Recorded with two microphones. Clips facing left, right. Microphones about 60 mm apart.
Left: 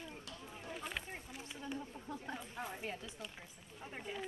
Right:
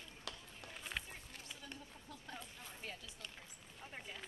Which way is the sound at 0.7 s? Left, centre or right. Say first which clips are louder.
Left 2 dB; centre.